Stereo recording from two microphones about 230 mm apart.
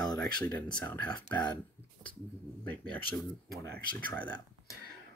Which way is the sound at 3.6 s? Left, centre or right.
Right.